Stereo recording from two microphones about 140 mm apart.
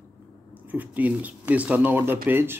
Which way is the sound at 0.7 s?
10° right (ahead or behind).